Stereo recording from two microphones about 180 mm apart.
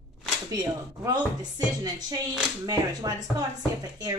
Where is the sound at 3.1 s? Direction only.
20° right (ahead or behind).